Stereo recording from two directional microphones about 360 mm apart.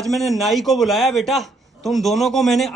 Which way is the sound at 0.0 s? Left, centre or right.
Centre.